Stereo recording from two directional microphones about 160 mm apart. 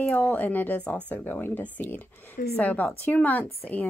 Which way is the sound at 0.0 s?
10° left (ahead or behind).